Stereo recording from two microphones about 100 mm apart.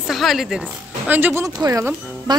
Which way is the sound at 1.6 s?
35° right (ahead or behind).